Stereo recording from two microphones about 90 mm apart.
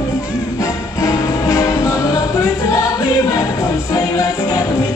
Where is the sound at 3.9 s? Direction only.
45° left (ahead or behind).